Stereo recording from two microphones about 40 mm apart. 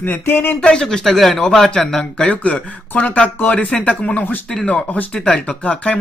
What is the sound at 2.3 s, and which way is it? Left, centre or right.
Speech, left.